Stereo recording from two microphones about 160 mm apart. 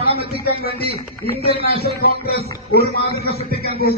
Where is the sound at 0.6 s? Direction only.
35° right (ahead or behind).